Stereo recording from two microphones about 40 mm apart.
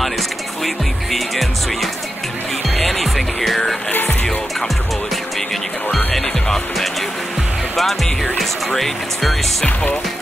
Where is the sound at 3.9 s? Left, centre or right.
Left.